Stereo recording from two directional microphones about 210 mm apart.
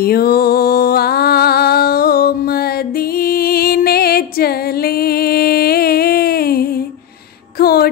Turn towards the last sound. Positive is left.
turn(degrees=45)  # may be behind; listen again after turning